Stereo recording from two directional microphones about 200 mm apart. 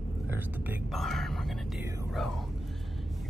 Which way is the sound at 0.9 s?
Centre (ahead or behind).